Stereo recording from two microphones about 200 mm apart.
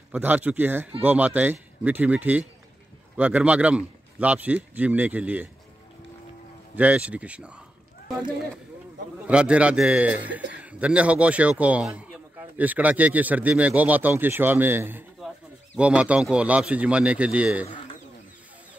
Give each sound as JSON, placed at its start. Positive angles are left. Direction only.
{"t": 0.1, "sound": "a man's voice", "side_deg": -10}
{"t": 6.7, "sound": "a man's voice", "side_deg": -5}
{"t": 9.2, "sound": "a man's voice", "side_deg": -5}